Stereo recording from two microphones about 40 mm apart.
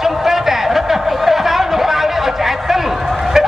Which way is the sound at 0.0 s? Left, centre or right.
Centre.